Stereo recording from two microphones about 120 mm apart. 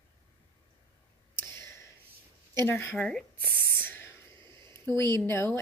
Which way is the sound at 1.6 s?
25° left (ahead or behind).